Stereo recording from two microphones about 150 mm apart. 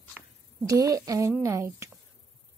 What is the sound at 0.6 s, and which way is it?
A woman's voice, 25° right (ahead or behind).